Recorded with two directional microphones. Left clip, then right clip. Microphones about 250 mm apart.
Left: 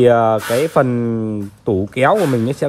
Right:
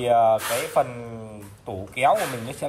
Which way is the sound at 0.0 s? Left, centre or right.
Left.